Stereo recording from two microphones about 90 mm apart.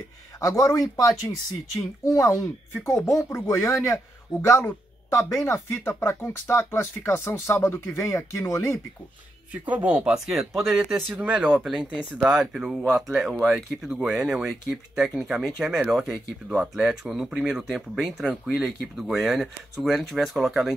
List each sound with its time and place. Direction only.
0.6 s speech: 40° left (ahead or behind)
9.7 s speech: 15° right (ahead or behind)